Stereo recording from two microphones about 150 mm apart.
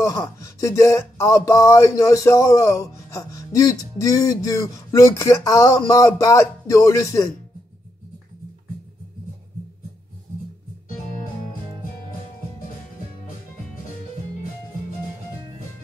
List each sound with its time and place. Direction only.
0.0 s speech: 20° left (ahead or behind)